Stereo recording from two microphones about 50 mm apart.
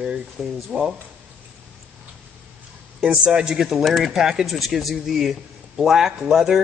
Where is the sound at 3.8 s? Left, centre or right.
Centre.